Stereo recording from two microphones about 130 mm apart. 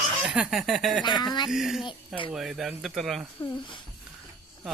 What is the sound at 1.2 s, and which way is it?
Speech, 30° left (ahead or behind).